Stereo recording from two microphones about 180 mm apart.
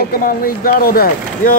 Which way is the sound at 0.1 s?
55° left (ahead or behind).